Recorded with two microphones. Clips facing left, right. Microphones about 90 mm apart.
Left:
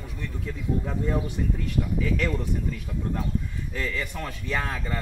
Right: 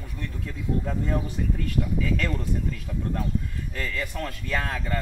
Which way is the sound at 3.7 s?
Centre (ahead or behind).